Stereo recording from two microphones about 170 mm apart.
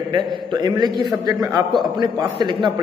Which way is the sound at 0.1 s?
25° right (ahead or behind).